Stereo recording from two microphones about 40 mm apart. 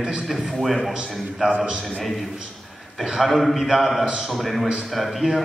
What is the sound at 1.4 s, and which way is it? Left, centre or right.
Speech, centre.